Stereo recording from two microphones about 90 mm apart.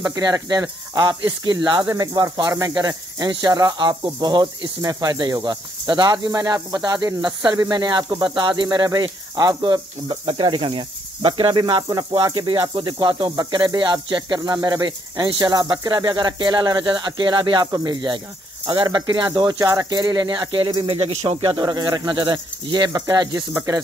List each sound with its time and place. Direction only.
0.1 s speech: 45° right (ahead or behind)
2.7 s speech: 45° right (ahead or behind)
10.2 s speech: 70° right (ahead or behind)
11.5 s speech: 55° right (ahead or behind)
12.4 s speech: 65° right (ahead or behind)
17.6 s speech: 50° right (ahead or behind); by 20.7 s 65° right (ahead or behind)
20.9 s speech: 90° right
21.6 s speech: 50° right (ahead or behind)
22.9 s speech: 45° right (ahead or behind)